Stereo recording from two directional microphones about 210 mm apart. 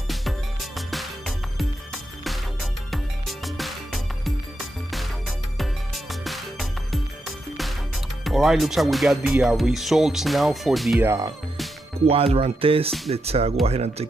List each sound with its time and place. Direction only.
0.1 s music: centre (ahead or behind)
8.2 s speech: centre (ahead or behind)
11.1 s speech: 15° right (ahead or behind)
12.1 s speech: 30° right (ahead or behind)